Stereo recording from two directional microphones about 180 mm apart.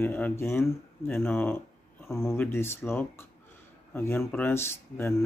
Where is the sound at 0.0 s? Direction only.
10° left (ahead or behind).